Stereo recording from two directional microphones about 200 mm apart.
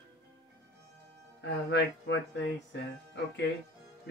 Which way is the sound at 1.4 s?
60° left (ahead or behind).